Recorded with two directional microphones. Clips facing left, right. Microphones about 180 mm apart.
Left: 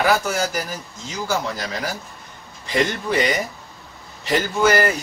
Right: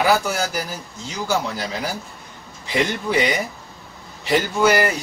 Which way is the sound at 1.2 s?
10° right (ahead or behind).